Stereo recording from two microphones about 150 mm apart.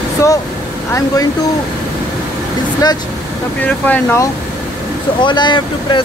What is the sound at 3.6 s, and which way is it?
Speech, 15° left (ahead or behind).